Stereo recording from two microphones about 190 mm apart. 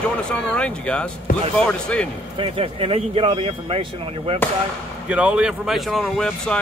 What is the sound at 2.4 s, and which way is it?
Speech, 30° right (ahead or behind).